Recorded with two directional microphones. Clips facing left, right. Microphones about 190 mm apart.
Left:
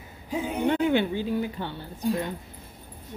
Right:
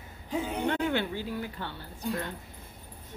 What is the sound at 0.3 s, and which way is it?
A woman's voice, 15° left (ahead or behind).